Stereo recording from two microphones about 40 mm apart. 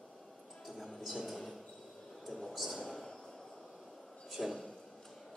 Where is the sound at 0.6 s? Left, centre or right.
Centre.